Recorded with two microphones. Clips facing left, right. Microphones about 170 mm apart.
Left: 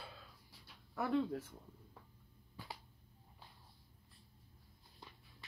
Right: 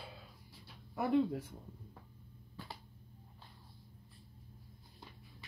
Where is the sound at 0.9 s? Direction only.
15° right (ahead or behind).